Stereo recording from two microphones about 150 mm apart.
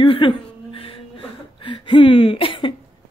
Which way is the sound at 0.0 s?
35° left (ahead or behind).